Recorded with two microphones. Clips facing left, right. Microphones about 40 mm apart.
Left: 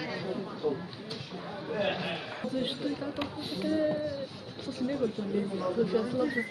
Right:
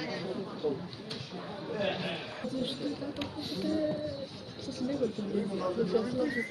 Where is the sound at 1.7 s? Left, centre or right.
Centre.